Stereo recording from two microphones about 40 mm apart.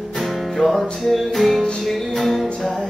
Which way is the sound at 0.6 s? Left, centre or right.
Centre.